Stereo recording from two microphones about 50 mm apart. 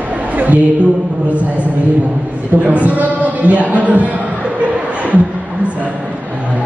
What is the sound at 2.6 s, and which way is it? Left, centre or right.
A man's voice, right.